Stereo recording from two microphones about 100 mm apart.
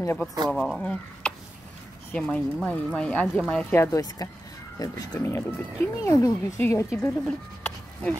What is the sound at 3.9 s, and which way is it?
Speech, 40° left (ahead or behind).